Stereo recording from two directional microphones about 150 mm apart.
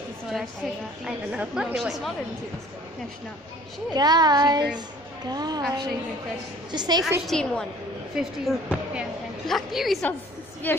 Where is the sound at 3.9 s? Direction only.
25° right (ahead or behind).